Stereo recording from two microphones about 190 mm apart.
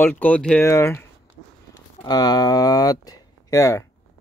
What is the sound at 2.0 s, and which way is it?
Speech, 20° left (ahead or behind).